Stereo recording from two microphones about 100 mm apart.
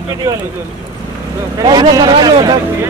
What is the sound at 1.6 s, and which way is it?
Speech, 45° right (ahead or behind).